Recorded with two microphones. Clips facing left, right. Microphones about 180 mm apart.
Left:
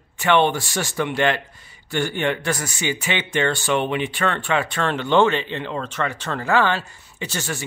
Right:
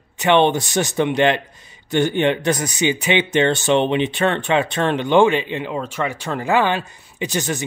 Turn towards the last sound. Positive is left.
turn(degrees=-20)  # may be behind; listen again after turning